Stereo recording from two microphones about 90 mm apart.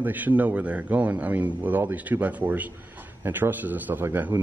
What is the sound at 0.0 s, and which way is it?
A man's voice, 20° right (ahead or behind).